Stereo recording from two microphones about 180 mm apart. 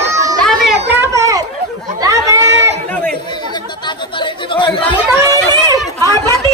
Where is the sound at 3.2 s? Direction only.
25° left (ahead or behind).